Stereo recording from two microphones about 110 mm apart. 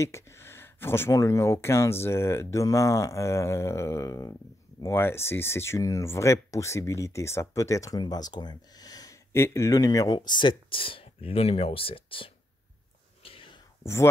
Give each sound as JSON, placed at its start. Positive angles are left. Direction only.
{"t": 0.0, "sound": "speech", "side_deg": 25}
{"t": 13.2, "sound": "whispering", "side_deg": 60}